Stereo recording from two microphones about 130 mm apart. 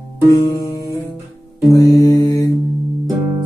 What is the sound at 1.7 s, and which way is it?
Music, 25° left (ahead or behind).